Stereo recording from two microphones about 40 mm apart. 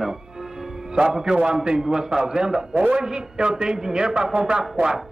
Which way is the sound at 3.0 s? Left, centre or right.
Centre.